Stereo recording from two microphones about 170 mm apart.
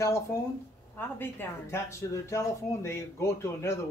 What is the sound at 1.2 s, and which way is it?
Speech, 10° left (ahead or behind).